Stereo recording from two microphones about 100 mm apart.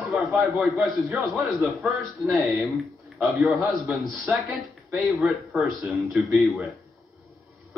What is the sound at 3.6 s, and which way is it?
Speech, centre (ahead or behind).